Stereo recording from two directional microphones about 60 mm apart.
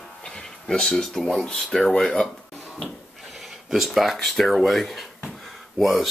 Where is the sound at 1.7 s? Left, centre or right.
Centre.